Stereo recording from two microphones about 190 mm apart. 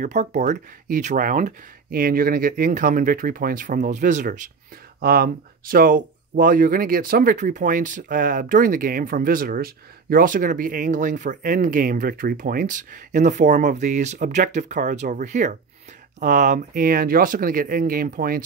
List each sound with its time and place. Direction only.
0.0 s speech: 35° right (ahead or behind)
5.0 s speech: 50° right (ahead or behind)